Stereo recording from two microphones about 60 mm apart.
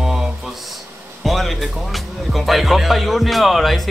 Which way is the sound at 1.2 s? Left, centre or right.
Centre.